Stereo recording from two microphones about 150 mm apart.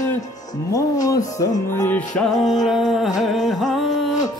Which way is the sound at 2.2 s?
Centre (ahead or behind).